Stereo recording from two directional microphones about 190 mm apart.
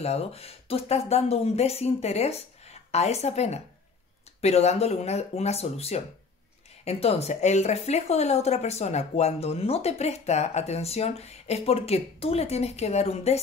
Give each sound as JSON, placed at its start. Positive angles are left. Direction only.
{"t": 0.0, "sound": "a woman's voice", "side_deg": 35}